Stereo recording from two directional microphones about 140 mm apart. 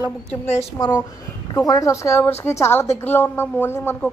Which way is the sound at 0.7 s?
25° left (ahead or behind).